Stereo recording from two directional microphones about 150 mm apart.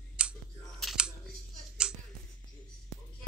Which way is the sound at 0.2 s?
5° right (ahead or behind).